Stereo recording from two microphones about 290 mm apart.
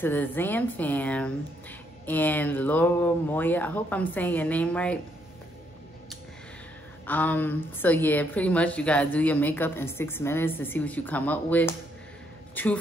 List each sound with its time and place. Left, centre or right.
0.0 s speech: centre
7.1 s speech: centre